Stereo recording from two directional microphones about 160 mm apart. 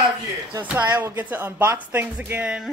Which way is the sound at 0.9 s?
10° right (ahead or behind).